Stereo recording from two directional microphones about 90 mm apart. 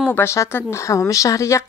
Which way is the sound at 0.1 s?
30° left (ahead or behind).